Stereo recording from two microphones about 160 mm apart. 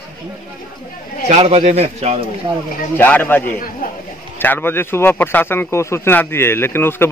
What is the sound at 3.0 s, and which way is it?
Speech, 10° left (ahead or behind).